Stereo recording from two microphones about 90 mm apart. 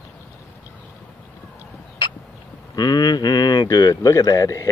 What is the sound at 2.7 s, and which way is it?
Speech, 50° left (ahead or behind).